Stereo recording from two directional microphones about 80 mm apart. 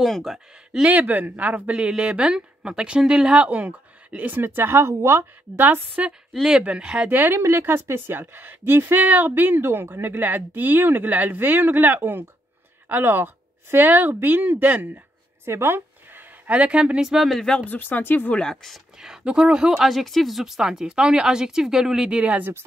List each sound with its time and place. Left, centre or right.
0.0 s speech: centre
0.8 s speech: centre
5.6 s a woman's voice: right
6.3 s a woman's voice: centre
15.4 s speech: right; by 17.6 s centre
17.6 s speech: left
18.4 s speech: centre
18.9 s speech: centre